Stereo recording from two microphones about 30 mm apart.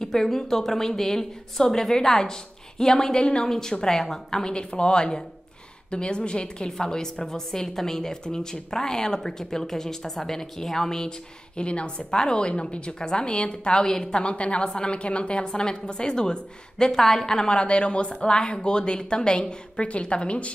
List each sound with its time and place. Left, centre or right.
0.0 s a woman's voice: centre
3.4 s a woman's voice: centre
11.5 s speech: left
12.1 s a woman's voice: left
14.2 s a woman's voice: left; by 17.4 s centre
17.6 s speech: left
19.8 s a woman's voice: left